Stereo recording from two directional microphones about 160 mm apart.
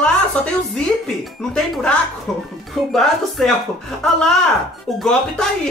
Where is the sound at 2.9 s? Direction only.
Centre (ahead or behind).